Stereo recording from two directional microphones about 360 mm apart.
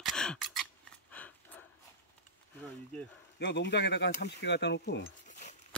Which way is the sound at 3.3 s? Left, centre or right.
Left.